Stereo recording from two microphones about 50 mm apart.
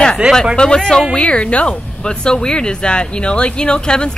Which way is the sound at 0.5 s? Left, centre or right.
Centre.